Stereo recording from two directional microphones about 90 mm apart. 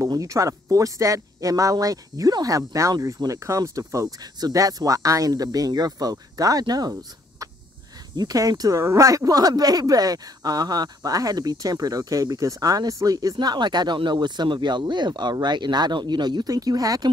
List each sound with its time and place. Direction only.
0.0 s speech: 35° right (ahead or behind)
8.2 s speech: 45° right (ahead or behind)